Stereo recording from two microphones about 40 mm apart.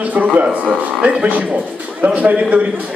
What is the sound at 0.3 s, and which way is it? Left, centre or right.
Speech, right.